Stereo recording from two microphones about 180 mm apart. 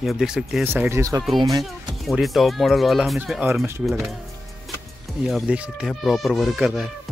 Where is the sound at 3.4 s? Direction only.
15° right (ahead or behind).